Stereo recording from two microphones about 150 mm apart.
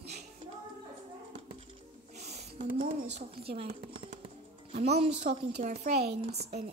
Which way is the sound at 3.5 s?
45° right (ahead or behind).